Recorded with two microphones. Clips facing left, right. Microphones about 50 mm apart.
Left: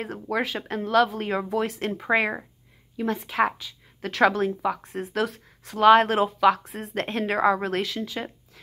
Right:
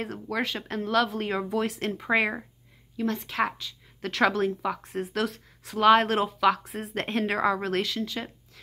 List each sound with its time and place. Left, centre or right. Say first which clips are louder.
0.0 s a woman's voice: left 3 dB; centre